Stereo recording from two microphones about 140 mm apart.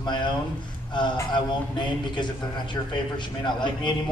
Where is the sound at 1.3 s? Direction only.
35° left (ahead or behind).